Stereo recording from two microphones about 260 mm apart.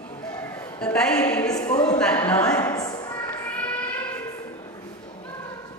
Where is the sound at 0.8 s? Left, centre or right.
Centre.